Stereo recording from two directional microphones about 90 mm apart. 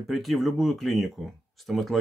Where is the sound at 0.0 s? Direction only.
Centre (ahead or behind).